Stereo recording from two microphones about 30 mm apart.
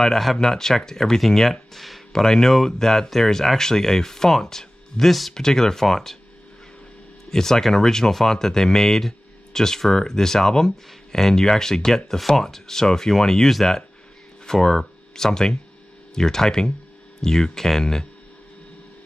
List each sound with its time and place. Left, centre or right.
0.0 s speech: centre
7.2 s speech: centre